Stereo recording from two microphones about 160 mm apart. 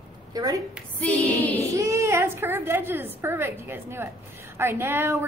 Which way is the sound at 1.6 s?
20° right (ahead or behind).